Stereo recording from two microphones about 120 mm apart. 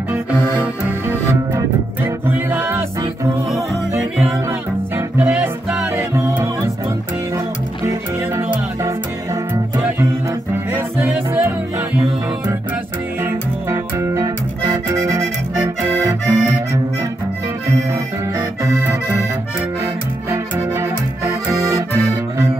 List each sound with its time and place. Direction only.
0.8 s music: 20° right (ahead or behind)
4.5 s music: 20° right (ahead or behind)
8.4 s music: 20° right (ahead or behind)
13.2 s music: 25° right (ahead or behind)
15.0 s accordion: 20° right (ahead or behind)
18.6 s accordion: 25° right (ahead or behind)
20.2 s accordion: 20° right (ahead or behind)